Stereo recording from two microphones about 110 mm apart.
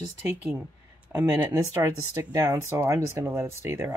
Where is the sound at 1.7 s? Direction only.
30° right (ahead or behind).